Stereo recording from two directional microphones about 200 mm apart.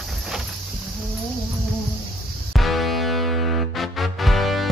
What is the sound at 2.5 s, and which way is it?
Music, centre (ahead or behind).